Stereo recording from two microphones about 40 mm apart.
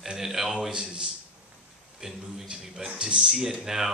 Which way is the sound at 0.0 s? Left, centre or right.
Centre.